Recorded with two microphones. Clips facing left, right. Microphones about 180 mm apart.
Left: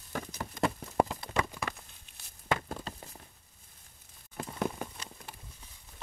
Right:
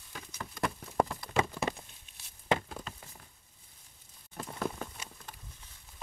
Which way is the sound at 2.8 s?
35° left (ahead or behind).